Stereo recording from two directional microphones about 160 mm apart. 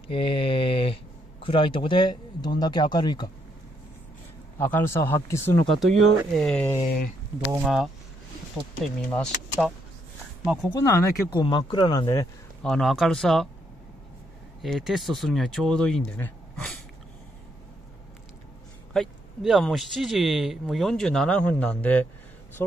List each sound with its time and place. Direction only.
0.1 s mantra: 35° left (ahead or behind)
1.4 s speech: 30° left (ahead or behind)
4.6 s speech: 10° left (ahead or behind)
5.7 s speech: centre (ahead or behind)
10.4 s speech: 5° right (ahead or behind)
10.7 s speech: 20° left (ahead or behind)
11.2 s speech: 30° left (ahead or behind)
12.6 s speech: centre (ahead or behind)
14.6 s speech: centre (ahead or behind)
18.9 s speech: centre (ahead or behind)